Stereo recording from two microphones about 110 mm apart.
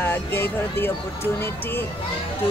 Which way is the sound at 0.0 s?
20° left (ahead or behind).